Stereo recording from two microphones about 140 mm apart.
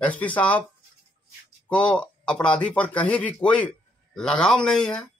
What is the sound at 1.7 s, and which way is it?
A man's voice, 5° left (ahead or behind).